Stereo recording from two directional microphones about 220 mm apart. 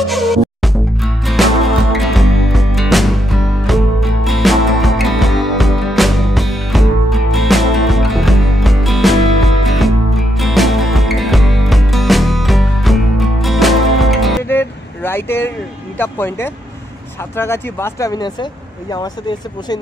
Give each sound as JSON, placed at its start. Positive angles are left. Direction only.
{"t": 0.0, "sound": "music", "side_deg": 0}
{"t": 14.6, "sound": "vehicle", "side_deg": 10}
{"t": 16.0, "sound": "speech", "side_deg": 10}